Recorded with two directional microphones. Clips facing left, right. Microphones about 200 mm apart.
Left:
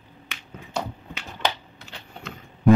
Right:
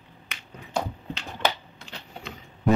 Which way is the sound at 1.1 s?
10° left (ahead or behind).